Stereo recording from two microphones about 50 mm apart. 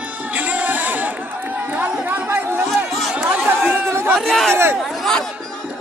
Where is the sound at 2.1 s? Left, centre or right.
Right.